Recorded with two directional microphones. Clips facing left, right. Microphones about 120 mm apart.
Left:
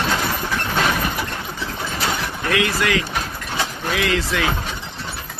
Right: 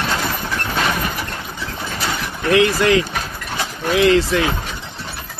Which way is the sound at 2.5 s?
30° right (ahead or behind).